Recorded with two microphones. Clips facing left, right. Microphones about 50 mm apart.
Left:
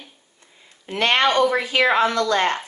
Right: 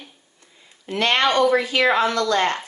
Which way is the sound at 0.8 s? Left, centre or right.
Left.